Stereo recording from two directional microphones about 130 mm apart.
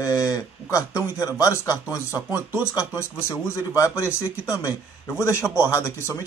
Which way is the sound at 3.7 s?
20° left (ahead or behind).